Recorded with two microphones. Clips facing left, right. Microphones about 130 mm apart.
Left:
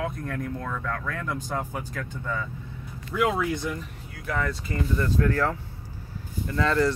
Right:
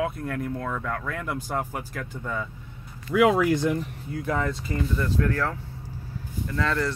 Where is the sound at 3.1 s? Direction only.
80° right.